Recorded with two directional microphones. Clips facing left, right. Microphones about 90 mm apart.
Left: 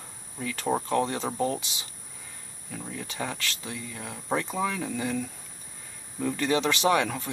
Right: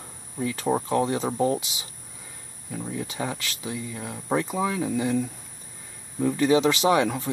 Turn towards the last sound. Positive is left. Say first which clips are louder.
# right 3 dB
turn(degrees=-15)  # may be behind; listen again after turning